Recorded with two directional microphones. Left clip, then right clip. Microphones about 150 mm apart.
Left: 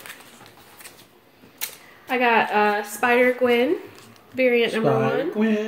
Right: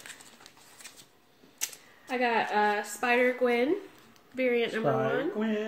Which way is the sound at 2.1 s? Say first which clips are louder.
Left 9 dB; 20° right (ahead or behind).